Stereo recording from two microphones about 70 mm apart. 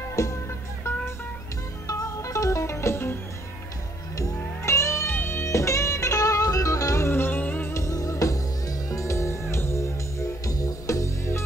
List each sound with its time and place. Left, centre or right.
0.1 s music: left
1.9 s music: left
4.6 s music: left
7.1 s music: left
7.7 s music: left